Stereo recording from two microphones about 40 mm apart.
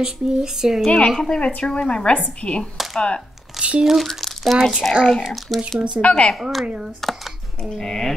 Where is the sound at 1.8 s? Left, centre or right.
Left.